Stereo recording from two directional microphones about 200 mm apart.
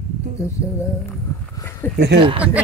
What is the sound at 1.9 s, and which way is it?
Speech, 55° right (ahead or behind).